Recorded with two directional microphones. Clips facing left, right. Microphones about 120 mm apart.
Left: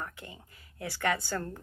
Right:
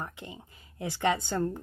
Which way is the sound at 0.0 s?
25° right (ahead or behind).